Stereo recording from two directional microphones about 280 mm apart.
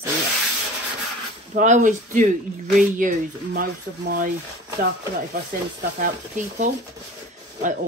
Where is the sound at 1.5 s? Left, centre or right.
Right.